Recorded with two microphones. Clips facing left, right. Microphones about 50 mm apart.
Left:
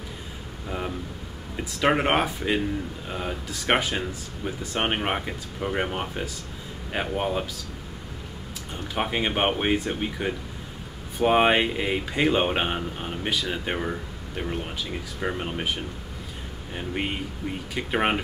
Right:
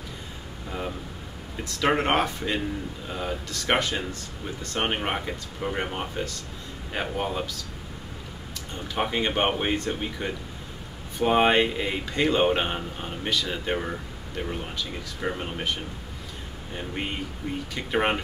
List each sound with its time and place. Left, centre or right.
0.7 s a sound: centre
1.6 s speech: centre
8.9 s speech: centre